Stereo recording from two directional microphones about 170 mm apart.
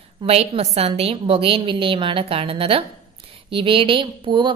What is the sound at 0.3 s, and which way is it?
A woman's voice, 35° right (ahead or behind).